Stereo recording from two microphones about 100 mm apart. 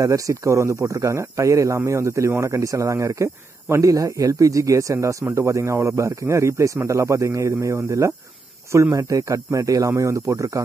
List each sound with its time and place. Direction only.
0.0 s speech: 35° right (ahead or behind)